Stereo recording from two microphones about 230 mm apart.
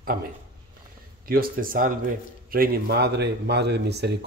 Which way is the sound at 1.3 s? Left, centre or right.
Right.